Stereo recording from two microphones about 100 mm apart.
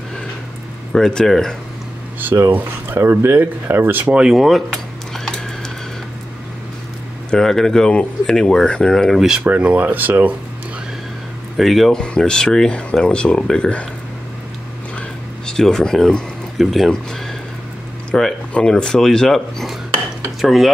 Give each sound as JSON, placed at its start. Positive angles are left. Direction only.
{"t": 0.9, "sound": "speech", "side_deg": 5}
{"t": 2.1, "sound": "speech", "side_deg": -25}
{"t": 5.1, "sound": "a sound", "side_deg": 5}
{"t": 7.2, "sound": "speech", "side_deg": 5}
{"t": 11.5, "sound": "speech", "side_deg": 0}
{"t": 15.0, "sound": "a sound", "side_deg": 5}
{"t": 18.1, "sound": "speech", "side_deg": 5}